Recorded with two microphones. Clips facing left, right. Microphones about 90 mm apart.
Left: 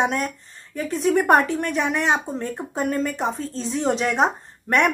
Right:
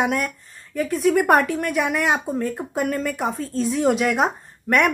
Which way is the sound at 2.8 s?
30° left (ahead or behind).